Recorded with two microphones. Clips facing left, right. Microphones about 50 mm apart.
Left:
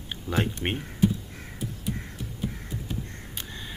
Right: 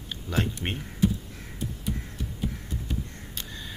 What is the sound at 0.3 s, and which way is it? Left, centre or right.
Speech, left.